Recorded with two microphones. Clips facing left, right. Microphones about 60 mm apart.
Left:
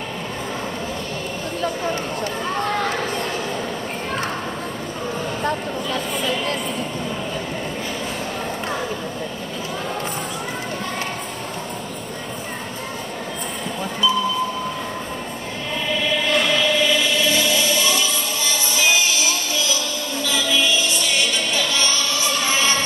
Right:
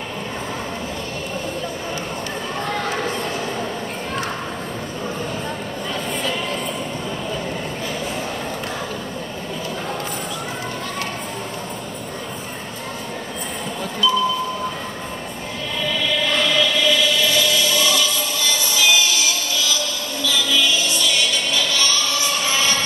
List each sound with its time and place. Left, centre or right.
16.5 s music: left
20.2 s music: left